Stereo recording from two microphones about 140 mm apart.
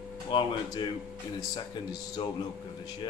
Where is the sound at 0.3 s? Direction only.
35° left (ahead or behind).